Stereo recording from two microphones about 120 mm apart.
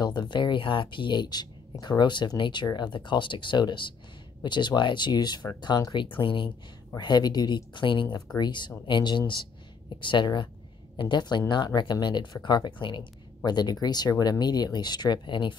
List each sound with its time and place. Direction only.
0.0 s speech: 35° left (ahead or behind)